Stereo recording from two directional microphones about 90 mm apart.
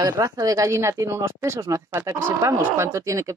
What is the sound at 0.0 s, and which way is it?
Speech, 40° right (ahead or behind).